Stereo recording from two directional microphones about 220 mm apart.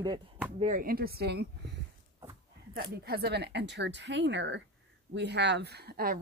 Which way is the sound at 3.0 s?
45° right (ahead or behind).